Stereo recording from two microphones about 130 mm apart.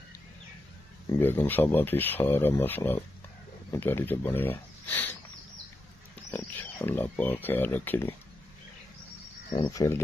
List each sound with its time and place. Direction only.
1.2 s speech: 15° left (ahead or behind)
6.3 s speech: 15° left (ahead or behind)
9.5 s speech: 30° left (ahead or behind)